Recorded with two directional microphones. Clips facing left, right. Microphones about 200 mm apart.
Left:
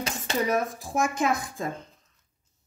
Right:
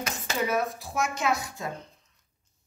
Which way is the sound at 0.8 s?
50° left (ahead or behind).